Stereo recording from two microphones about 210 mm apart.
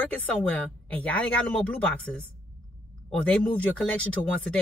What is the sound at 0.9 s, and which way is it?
Speech, 5° left (ahead or behind).